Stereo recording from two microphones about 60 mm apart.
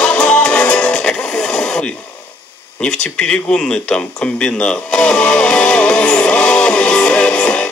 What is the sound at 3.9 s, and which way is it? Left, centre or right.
Speech, centre.